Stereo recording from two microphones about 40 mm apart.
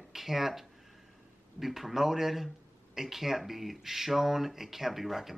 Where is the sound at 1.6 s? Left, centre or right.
Centre.